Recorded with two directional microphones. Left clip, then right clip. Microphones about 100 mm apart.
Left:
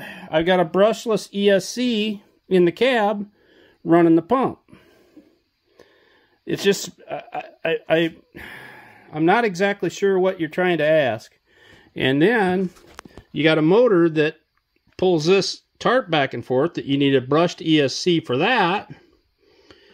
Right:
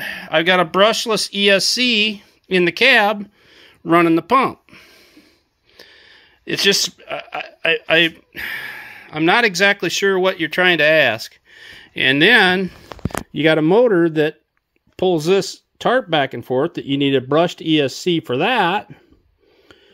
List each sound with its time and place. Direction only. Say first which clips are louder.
0.0 s a sound: right 4 dB; 25° left (ahead or behind)
0.7 s speech: right 3 dB; 40° left (ahead or behind)
5.8 s a sound: right 8 dB; 30° left (ahead or behind)
6.4 s speech: right 5 dB; 65° left (ahead or behind)
7.8 s speech: right 4 dB; 30° left (ahead or behind)
13.3 s speech: right 2 dB; centre (ahead or behind)